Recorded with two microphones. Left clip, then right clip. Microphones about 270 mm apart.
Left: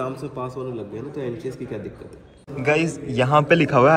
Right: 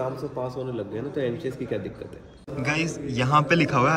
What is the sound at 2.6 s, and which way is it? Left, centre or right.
A man's voice, centre.